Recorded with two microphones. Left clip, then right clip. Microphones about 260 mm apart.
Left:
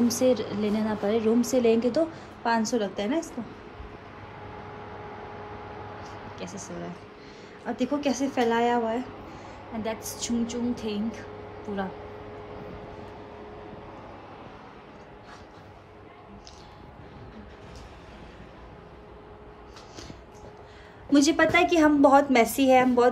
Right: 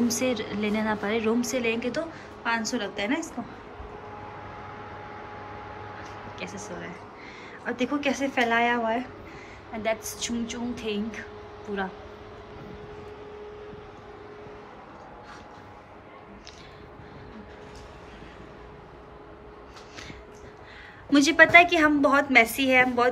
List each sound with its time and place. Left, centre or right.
0.1 s a woman's voice: centre
4.7 s a sound: centre
7.6 s a woman's voice: centre
21.1 s a woman's voice: centre